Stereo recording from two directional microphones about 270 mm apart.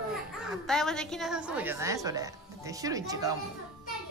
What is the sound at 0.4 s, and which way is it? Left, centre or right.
A woman's voice, centre.